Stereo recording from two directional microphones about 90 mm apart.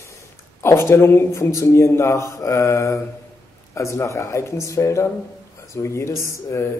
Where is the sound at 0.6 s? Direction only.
30° left (ahead or behind).